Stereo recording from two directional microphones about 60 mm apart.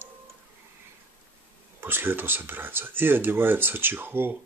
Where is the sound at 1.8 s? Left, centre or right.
Right.